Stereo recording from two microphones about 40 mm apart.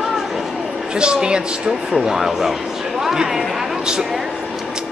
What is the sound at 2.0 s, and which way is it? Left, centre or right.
Speech, centre.